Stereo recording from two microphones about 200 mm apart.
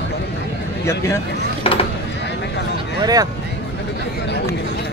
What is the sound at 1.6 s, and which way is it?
Speech, 30° left (ahead or behind).